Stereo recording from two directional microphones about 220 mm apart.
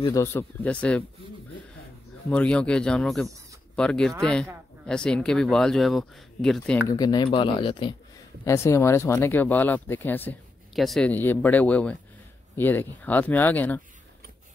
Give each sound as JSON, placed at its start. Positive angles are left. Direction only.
{"t": 0.0, "sound": "speech", "side_deg": 15}
{"t": 2.2, "sound": "speech", "side_deg": 5}
{"t": 6.9, "sound": "speech", "side_deg": 20}